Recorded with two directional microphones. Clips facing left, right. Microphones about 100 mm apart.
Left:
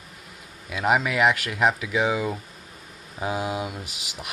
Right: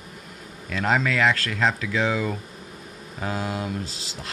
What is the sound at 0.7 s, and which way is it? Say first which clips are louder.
Speech: even; 15° left (ahead or behind).